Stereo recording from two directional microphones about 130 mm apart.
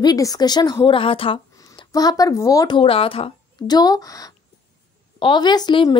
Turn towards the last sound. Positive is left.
turn(degrees=30)  # may be behind; listen again after turning